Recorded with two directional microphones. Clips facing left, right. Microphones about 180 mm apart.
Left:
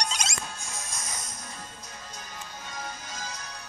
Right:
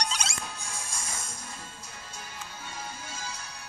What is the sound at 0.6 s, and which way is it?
Music, 30° right (ahead or behind).